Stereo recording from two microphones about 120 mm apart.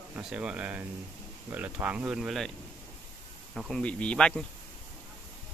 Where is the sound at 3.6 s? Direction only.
5° left (ahead or behind).